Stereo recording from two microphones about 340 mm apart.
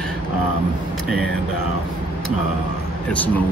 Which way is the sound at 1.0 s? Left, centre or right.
Left.